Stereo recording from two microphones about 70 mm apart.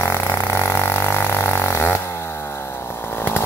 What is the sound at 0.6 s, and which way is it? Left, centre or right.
Vehicle, left.